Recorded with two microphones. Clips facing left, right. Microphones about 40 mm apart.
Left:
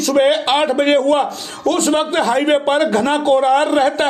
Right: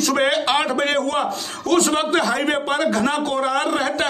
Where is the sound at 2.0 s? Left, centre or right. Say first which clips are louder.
Left 3 dB; centre.